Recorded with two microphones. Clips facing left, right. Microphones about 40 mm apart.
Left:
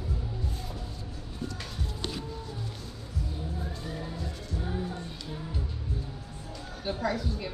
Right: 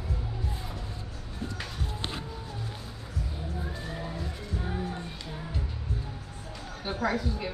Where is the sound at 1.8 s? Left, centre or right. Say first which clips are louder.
Left 1 dB; right.